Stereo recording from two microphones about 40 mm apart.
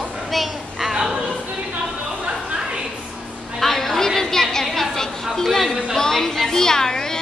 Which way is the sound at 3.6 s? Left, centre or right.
Centre.